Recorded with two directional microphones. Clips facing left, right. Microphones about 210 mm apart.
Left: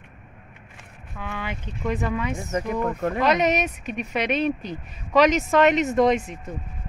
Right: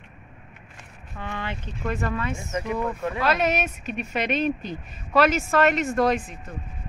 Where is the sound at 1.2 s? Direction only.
10° left (ahead or behind).